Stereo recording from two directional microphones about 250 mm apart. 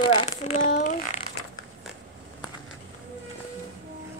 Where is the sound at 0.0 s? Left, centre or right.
Left.